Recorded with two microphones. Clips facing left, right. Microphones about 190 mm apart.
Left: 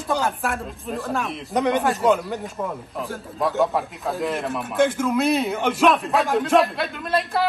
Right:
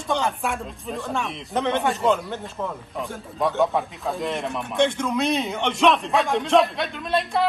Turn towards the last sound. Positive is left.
turn(degrees=0)  # may be behind; listen again after turning